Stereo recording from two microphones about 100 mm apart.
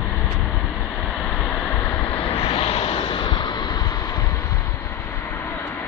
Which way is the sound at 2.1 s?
70° left (ahead or behind).